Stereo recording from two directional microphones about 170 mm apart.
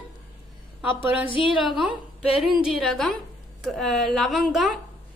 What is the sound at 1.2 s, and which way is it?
Speech, 30° left (ahead or behind).